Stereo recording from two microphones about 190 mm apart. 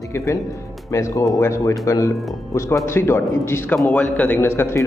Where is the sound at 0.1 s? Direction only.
15° left (ahead or behind).